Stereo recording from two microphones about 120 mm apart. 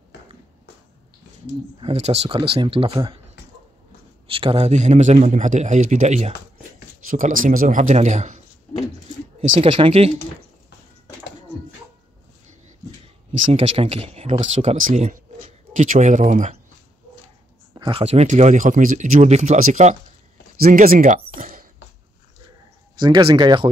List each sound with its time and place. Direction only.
1.8 s speech: 60° right (ahead or behind)
2.5 s speech: 50° right (ahead or behind)
4.3 s a man's voice: 50° right (ahead or behind); by 6.3 s 75° right (ahead or behind)
7.2 s speech: 90° right
9.4 s speech: 55° right (ahead or behind)
13.5 s speech: 55° right (ahead or behind); by 16.5 s 90° right
17.7 s a sound: 45° right (ahead or behind)
18.0 s speech: 70° right (ahead or behind)
22.9 s speech: 40° right (ahead or behind)